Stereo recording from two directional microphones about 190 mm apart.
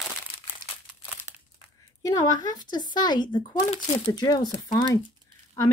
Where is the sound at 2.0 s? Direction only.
20° left (ahead or behind).